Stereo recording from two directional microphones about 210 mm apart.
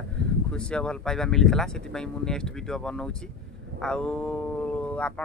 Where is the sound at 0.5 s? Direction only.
5° left (ahead or behind).